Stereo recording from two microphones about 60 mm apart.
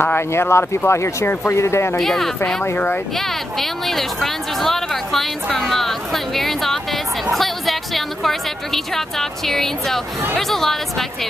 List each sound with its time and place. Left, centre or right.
0.0 s speech: left
2.0 s speech: centre